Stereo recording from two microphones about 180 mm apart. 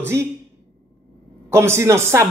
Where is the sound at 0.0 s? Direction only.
15° right (ahead or behind).